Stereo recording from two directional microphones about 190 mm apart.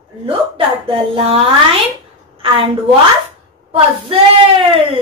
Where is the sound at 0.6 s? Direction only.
30° right (ahead or behind).